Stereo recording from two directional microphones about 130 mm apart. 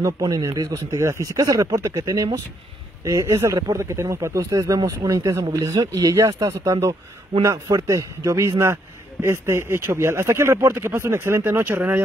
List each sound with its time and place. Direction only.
0.0 s speech: 25° right (ahead or behind)